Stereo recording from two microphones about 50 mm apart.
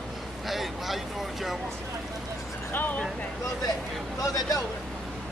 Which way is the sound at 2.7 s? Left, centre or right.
Left.